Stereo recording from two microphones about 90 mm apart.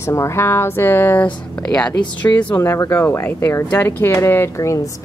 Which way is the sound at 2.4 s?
25° left (ahead or behind).